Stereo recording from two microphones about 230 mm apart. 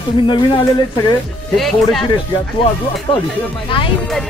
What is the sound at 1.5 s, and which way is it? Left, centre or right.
Speech, centre.